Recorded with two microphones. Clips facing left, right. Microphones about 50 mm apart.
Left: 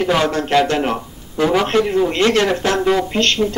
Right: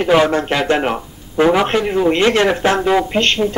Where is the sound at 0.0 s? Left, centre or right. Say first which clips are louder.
Right 4 dB; centre.